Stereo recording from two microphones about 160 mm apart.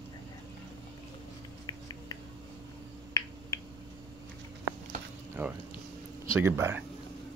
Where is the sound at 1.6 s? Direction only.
25° left (ahead or behind).